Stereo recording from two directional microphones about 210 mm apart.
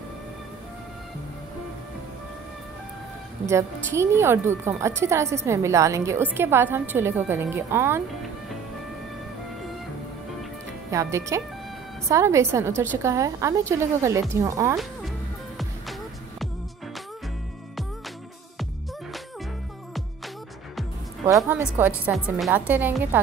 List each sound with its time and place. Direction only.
3.4 s speech: 15° right (ahead or behind)
10.9 s speech: 15° right (ahead or behind)
14.8 s music: centre (ahead or behind)
21.4 s speech: 10° right (ahead or behind)